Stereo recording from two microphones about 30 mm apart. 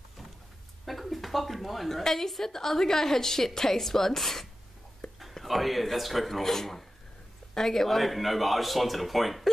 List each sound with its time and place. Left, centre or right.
0.8 s a sound: centre
1.9 s a woman's voice: centre
5.0 s whispering: centre
5.4 s a man's voice: centre
8.0 s a man's voice: centre